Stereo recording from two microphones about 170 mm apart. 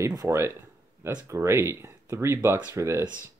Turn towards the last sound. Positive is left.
turn(degrees=-15)  # may be behind; listen again after turning